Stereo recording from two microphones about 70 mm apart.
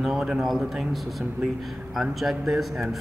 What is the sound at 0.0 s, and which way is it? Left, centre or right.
Speech, centre.